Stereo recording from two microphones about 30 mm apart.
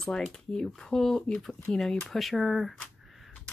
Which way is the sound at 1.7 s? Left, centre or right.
Left.